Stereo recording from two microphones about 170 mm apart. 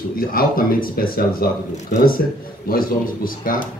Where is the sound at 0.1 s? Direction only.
55° left (ahead or behind).